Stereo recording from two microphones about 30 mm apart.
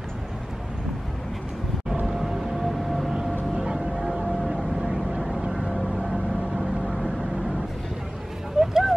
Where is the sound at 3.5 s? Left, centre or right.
Right.